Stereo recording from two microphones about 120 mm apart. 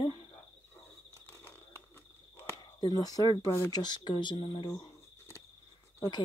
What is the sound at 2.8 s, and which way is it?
Speech, 30° left (ahead or behind).